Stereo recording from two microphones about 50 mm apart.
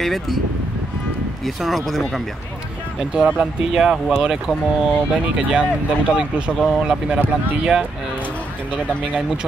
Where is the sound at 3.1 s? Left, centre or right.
Right.